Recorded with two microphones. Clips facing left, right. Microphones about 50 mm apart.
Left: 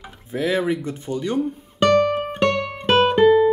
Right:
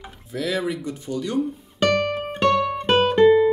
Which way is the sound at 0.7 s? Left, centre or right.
Left.